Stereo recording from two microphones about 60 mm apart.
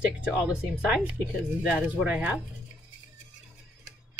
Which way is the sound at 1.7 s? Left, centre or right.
Centre.